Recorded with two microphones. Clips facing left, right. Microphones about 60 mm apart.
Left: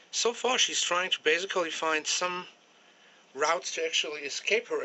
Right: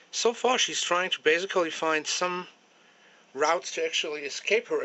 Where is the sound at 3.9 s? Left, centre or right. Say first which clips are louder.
Right 2 dB; centre.